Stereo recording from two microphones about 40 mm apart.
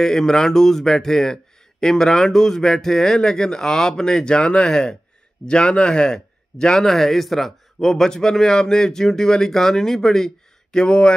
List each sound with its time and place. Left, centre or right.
0.0 s speech: centre